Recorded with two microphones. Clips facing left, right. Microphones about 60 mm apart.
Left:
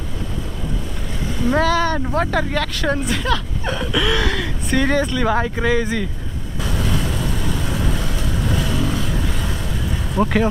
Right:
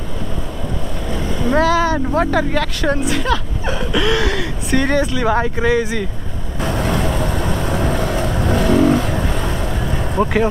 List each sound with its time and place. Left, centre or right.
1.1 s vehicle: right
1.5 s speech: centre
6.6 s vehicle: right
10.2 s speech: centre